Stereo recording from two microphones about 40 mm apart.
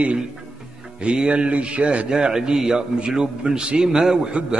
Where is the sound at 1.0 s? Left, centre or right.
Right.